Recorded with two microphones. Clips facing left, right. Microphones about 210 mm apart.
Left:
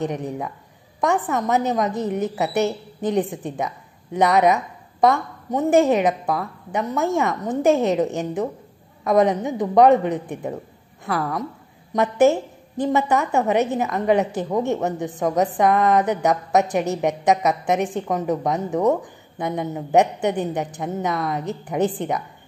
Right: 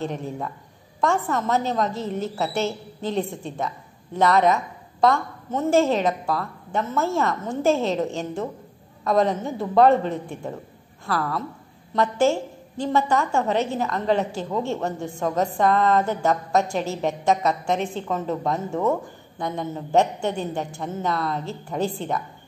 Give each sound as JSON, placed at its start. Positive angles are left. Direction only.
{"t": 0.0, "sound": "a woman's voice", "side_deg": 15}